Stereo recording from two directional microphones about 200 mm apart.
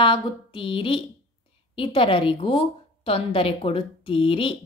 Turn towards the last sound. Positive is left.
turn(degrees=25)  # may be behind; listen again after turning